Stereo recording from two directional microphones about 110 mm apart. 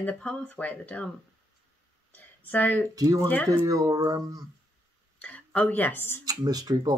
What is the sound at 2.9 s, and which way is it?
Speech, 35° right (ahead or behind).